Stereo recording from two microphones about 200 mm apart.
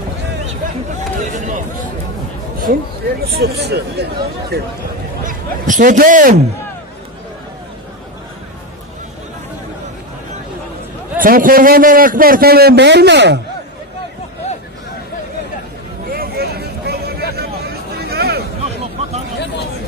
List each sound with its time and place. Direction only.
1.2 s a sound: 40° right (ahead or behind)
2.7 s a man's voice: 45° right (ahead or behind)
5.2 s a man's voice: 40° right (ahead or behind)
11.1 s a man's voice: 45° right (ahead or behind)
16.1 s vehicle: 50° right (ahead or behind)